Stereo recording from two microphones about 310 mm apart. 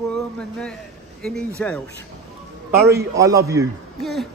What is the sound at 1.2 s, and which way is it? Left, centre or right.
Speech, centre.